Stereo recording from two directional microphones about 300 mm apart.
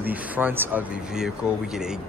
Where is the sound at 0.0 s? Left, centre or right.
Centre.